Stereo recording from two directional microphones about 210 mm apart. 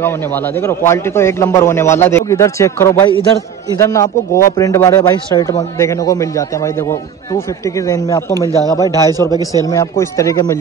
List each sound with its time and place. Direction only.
0.6 s a man's voice: 10° left (ahead or behind)